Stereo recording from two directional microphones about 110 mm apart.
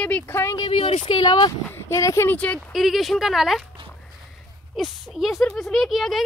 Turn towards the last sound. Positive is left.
turn(degrees=0)  # may be behind; listen again after turning